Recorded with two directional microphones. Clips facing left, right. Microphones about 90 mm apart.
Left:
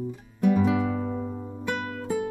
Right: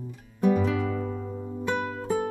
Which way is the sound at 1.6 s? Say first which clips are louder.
Right 2 dB; 25° right (ahead or behind).